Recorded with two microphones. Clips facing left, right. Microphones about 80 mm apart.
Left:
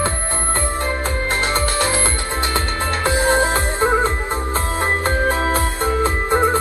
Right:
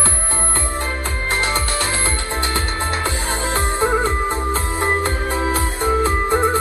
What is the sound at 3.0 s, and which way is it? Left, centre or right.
Music, left.